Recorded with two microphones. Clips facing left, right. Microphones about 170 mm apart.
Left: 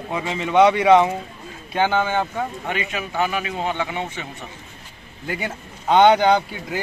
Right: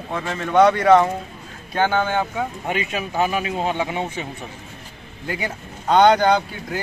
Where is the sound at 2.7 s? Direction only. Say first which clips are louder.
Right 2 dB; 20° right (ahead or behind).